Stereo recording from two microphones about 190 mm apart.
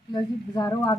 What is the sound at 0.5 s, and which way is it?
Speech, 15° left (ahead or behind).